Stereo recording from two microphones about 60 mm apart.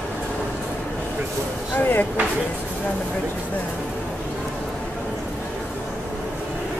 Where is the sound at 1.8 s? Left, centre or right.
Left.